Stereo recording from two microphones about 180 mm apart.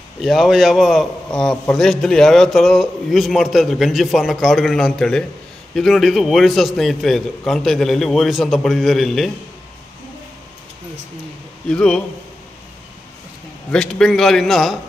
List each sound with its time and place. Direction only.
0.2 s a man's voice: centre (ahead or behind)
11.7 s a man's voice: 5° left (ahead or behind)
13.7 s a man's voice: 5° left (ahead or behind)